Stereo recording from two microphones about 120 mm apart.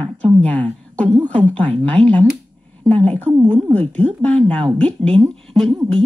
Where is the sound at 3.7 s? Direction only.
15° left (ahead or behind).